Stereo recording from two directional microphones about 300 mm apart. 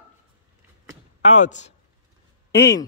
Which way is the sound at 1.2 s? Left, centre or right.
Left.